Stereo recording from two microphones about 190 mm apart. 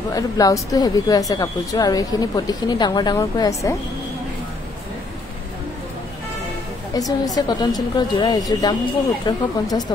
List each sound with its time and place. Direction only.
0.1 s speech: 20° left (ahead or behind)
6.9 s speech: 20° left (ahead or behind)